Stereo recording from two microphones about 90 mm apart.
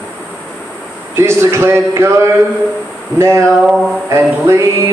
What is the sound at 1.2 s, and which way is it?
A man's voice, 30° right (ahead or behind).